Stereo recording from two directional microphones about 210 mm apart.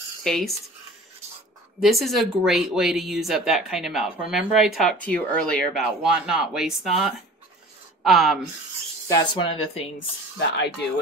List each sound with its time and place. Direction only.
0.2 s cutlery: centre (ahead or behind)
1.8 s speech: centre (ahead or behind)
9.0 s speech: 20° left (ahead or behind)